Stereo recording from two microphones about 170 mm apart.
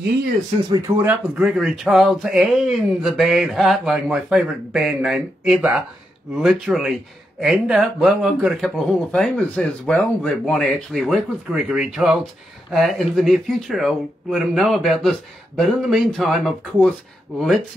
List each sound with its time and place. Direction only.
0.7 s speech: 20° right (ahead or behind)
1.0 s a man's voice: 5° right (ahead or behind)